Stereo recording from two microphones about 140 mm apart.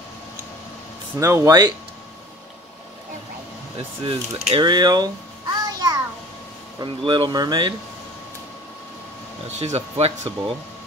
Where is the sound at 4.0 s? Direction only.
40° right (ahead or behind).